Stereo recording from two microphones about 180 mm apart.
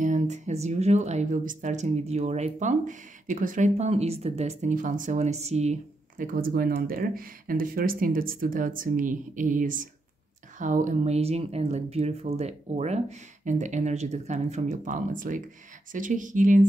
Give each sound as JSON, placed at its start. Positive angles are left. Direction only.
{"t": 0.0, "sound": "speech", "side_deg": -40}